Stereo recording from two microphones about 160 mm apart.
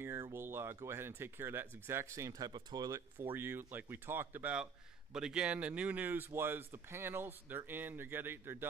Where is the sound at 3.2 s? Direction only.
15° right (ahead or behind).